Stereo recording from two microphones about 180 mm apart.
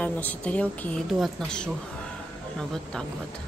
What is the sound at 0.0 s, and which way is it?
A woman's voice, 10° left (ahead or behind).